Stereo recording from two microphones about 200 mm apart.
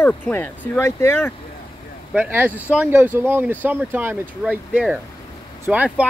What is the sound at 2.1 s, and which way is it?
Speech, 10° right (ahead or behind).